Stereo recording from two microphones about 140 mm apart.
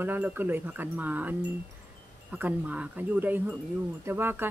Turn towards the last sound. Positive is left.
turn(degrees=-15)  # may be behind; listen again after turning